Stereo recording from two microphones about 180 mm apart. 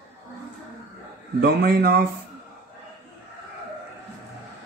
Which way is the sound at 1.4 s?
60° right (ahead or behind).